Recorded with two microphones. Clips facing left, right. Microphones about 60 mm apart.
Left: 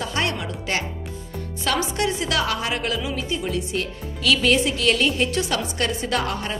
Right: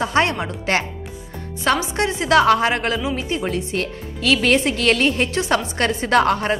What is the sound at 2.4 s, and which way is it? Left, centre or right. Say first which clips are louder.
A woman's voice: right 8 dB; right.